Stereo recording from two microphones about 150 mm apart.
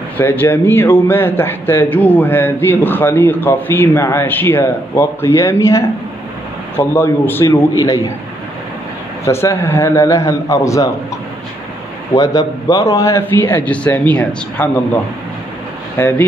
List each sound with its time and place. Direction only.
0.2 s a man's voice: 15° left (ahead or behind)
9.2 s a man's voice: 15° left (ahead or behind)
12.2 s a man's voice: 25° left (ahead or behind)
16.0 s a man's voice: 15° left (ahead or behind)